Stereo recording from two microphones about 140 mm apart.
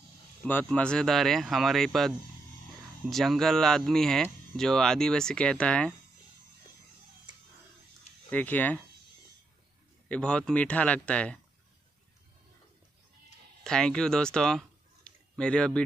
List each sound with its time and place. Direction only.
0.7 s speech: 5° left (ahead or behind)
8.3 s a man's voice: 10° left (ahead or behind)
10.0 s a man's voice: 5° left (ahead or behind)
13.7 s speech: 5° left (ahead or behind)
15.0 s a sound: 5° left (ahead or behind)